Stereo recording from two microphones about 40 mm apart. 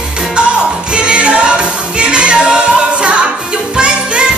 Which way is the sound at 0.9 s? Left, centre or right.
Right.